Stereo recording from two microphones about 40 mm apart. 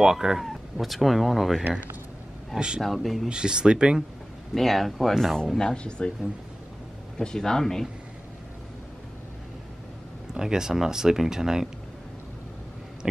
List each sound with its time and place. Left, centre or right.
0.0 s speech: centre
2.8 s speech: centre
3.3 s speech: centre
4.6 s speech: centre
5.6 s speech: left
7.2 s speech: centre
10.3 s speech: centre
13.0 s a sound: centre